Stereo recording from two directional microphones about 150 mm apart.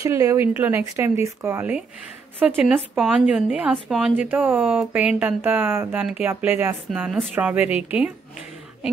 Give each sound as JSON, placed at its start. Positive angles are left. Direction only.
{"t": 0.0, "sound": "speech", "side_deg": -20}
{"t": 6.9, "sound": "a woman's voice", "side_deg": 0}